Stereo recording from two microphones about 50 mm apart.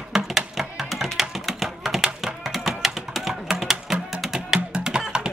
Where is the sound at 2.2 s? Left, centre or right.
Centre.